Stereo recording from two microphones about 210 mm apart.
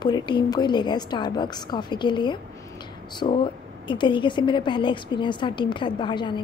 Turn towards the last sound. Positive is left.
turn(degrees=20)  # may be behind; listen again after turning